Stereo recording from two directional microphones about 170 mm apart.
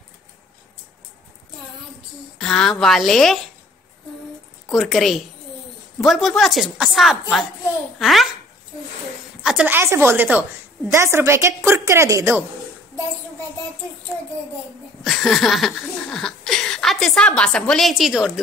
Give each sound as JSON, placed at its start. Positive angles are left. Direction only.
{"t": 2.3, "sound": "laughter", "side_deg": 5}
{"t": 4.6, "sound": "laughter", "side_deg": 0}
{"t": 9.4, "sound": "a woman's voice", "side_deg": -5}
{"t": 15.0, "sound": "laughter", "side_deg": 0}